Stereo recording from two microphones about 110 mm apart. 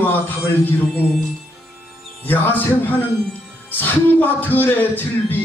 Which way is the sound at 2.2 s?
15° left (ahead or behind).